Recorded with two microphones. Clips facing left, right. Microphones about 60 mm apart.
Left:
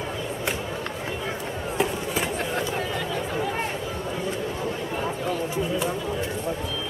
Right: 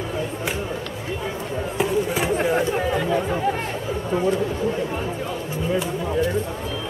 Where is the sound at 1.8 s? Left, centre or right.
Centre.